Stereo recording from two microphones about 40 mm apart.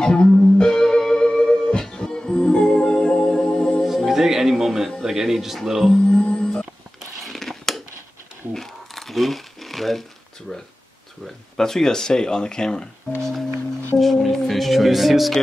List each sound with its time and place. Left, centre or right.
0.0 s music: centre
3.8 s music: centre
5.0 s speech: centre
6.0 s music: centre
7.2 s a sound: centre
8.5 s crumpling: centre
11.2 s speech: centre
13.2 s music: centre
13.9 s speech: centre